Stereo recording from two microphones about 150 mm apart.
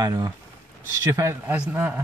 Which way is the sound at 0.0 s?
25° right (ahead or behind).